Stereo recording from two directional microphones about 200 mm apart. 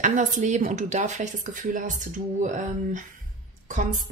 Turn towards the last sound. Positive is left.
turn(degrees=-40)  # may be behind; listen again after turning